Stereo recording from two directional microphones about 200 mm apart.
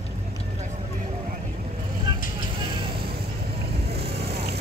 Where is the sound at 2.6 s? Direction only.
25° right (ahead or behind).